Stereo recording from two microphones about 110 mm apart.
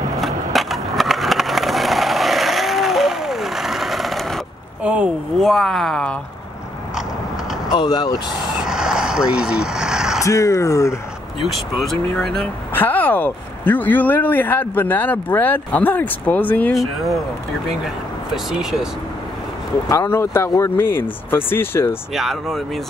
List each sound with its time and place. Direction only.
0.2 s skateboard: centre (ahead or behind)
4.8 s a sound: 10° right (ahead or behind)
5.4 s speech: centre (ahead or behind)
7.7 s speech: 45° left (ahead or behind)
8.6 s vehicle: 5° right (ahead or behind)
10.2 s speech: 30° left (ahead or behind)
11.4 s speech: centre (ahead or behind)
12.7 s speech: 15° left (ahead or behind)
17.6 s speech: 5° right (ahead or behind)
19.9 s speech: 25° left (ahead or behind)
22.1 s speech: centre (ahead or behind)